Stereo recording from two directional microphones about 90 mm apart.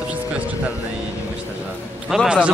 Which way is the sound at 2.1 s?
5° right (ahead or behind).